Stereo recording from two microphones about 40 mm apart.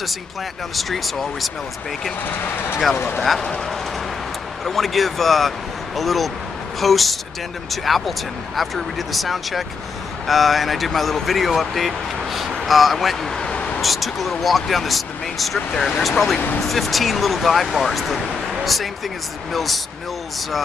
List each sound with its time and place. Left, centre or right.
0.7 s speech: centre
2.2 s speech: left
4.6 s speech: centre
13.4 s vehicle: left
13.7 s speech: centre